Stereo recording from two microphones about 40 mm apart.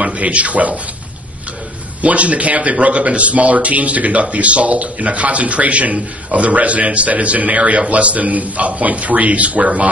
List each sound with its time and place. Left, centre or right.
0.0 s speech: right
2.0 s speech: right